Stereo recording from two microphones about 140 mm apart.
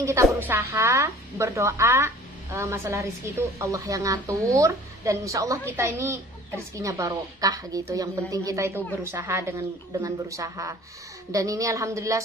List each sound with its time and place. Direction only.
0.0 s a woman's voice: 20° right (ahead or behind)